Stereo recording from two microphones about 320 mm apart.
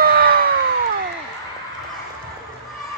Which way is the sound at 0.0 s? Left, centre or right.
Right.